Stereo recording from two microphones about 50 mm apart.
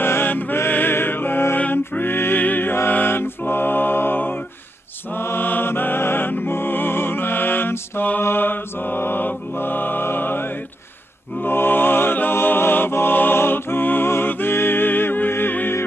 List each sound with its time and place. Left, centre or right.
0.0 s music: left
8.2 s mantra: left
11.4 s mantra: left